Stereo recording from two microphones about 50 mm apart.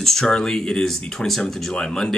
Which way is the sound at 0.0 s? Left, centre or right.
Centre.